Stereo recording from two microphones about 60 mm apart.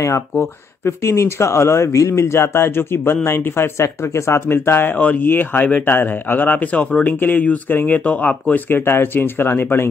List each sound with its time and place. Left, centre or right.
0.0 s speech: left
4.9 s speech: left
5.9 s speech: left